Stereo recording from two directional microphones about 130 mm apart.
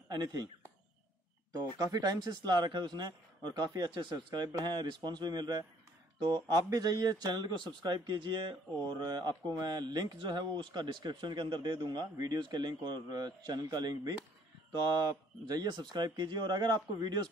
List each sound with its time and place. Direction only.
0.1 s speech: 30° right (ahead or behind)
1.5 s speech: 30° right (ahead or behind)